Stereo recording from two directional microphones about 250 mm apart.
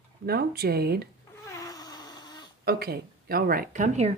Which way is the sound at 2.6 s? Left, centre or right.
Right.